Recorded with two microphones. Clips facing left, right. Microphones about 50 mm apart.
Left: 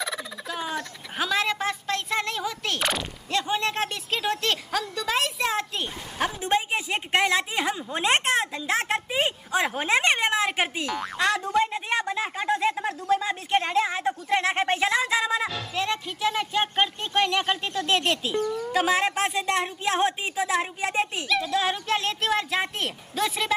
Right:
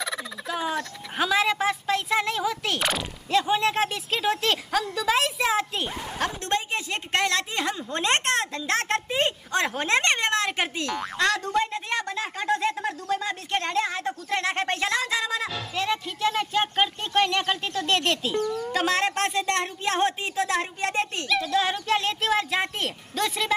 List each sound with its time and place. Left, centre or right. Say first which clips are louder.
0.0 s fowl: right 1 dB; centre
6.1 s a woman's voice: left 3 dB; centre
15.5 s fowl: right 1 dB; centre
18.4 s a woman's voice: even; centre
18.8 s a woman's voice: left 1 dB; centre
21.8 s fowl: right 1 dB; centre